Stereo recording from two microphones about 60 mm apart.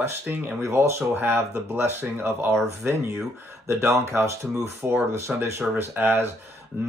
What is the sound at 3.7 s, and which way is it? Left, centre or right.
Speech, right.